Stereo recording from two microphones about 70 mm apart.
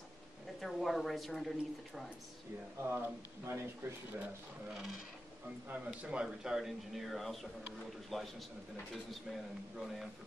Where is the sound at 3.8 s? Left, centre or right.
Right.